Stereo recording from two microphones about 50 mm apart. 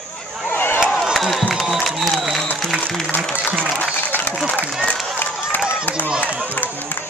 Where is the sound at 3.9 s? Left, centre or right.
Left.